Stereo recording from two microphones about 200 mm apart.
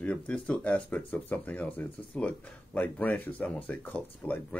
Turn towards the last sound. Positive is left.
turn(degrees=5)  # may be behind; listen again after turning